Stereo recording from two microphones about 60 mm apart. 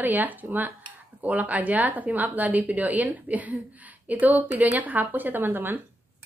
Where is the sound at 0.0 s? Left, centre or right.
Right.